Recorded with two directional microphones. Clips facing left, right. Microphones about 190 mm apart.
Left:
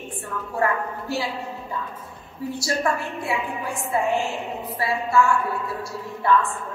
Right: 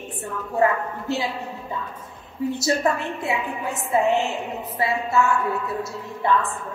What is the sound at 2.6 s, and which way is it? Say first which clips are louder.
A woman's voice: right 1 dB; 20° right (ahead or behind).